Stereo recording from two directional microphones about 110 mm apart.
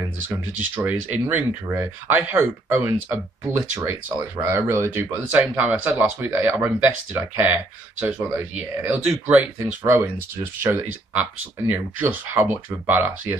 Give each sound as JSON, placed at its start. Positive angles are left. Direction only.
{"t": 0.7, "sound": "speech", "side_deg": -15}
{"t": 4.2, "sound": "speech", "side_deg": -25}